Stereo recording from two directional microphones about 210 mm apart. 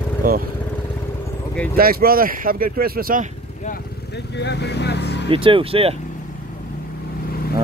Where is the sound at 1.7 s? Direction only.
45° right (ahead or behind).